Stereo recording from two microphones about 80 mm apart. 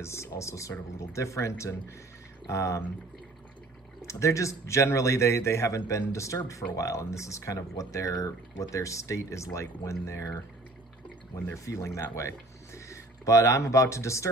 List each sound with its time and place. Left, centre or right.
0.0 s speech: left
4.0 s speech: left
11.4 s speech: left